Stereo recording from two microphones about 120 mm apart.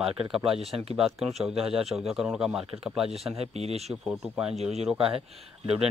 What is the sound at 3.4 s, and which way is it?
Speech, 60° right (ahead or behind).